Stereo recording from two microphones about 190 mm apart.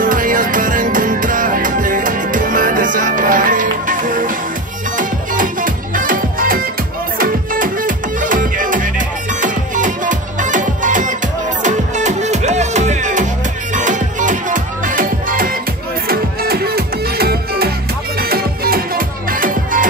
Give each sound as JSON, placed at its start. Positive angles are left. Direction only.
{"t": 0.0, "sound": "music", "side_deg": -45}